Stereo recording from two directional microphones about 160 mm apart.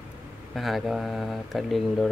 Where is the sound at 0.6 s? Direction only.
Centre (ahead or behind).